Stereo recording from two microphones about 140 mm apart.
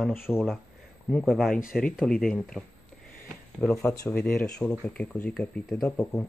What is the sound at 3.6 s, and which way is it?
Speech, 15° left (ahead or behind).